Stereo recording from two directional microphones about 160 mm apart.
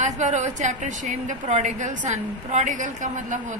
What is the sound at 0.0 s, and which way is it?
A woman's voice, 50° right (ahead or behind).